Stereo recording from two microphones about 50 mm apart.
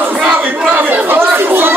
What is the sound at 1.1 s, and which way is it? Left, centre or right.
Speech, right.